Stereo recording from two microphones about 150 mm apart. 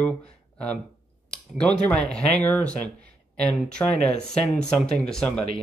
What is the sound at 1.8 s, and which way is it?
Speech, 10° left (ahead or behind).